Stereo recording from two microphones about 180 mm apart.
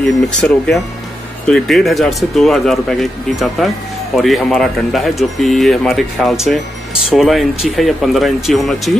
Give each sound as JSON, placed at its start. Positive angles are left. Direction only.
{"t": 0.4, "sound": "speech", "side_deg": 5}